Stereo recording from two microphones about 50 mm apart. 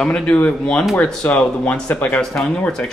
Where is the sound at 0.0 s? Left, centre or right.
Centre.